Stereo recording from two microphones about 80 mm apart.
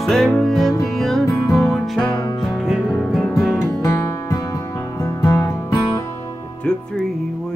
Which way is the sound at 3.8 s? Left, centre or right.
Left.